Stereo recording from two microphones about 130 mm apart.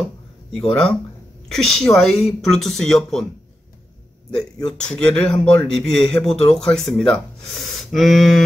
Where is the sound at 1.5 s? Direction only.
Centre (ahead or behind).